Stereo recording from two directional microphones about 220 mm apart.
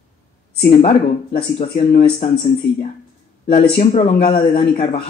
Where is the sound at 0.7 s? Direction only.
25° left (ahead or behind).